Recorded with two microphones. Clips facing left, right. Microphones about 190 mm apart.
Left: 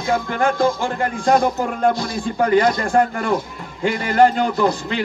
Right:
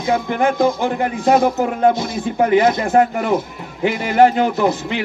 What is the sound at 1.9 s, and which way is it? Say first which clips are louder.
Speech: right 2 dB; 20° right (ahead or behind).